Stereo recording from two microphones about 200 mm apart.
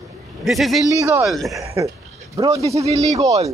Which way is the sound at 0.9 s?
15° right (ahead or behind).